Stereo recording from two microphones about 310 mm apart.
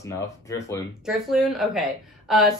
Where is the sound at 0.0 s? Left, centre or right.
Centre.